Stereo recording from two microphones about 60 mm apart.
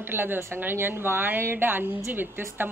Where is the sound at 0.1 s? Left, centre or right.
Right.